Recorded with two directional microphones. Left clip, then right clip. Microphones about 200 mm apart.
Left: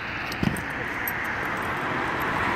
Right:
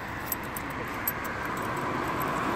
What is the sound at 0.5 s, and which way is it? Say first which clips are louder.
Vehicle: left 5 dB; 50° right (ahead or behind).